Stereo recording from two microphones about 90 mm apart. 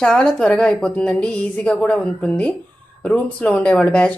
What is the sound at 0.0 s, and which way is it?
A woman's voice, 10° left (ahead or behind).